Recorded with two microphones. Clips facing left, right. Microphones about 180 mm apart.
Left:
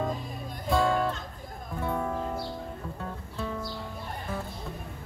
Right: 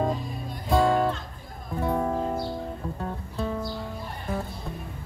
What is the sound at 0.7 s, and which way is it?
Music, 40° right (ahead or behind).